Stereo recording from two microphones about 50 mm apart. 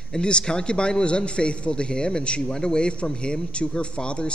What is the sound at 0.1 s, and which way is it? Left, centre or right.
A man's voice, centre.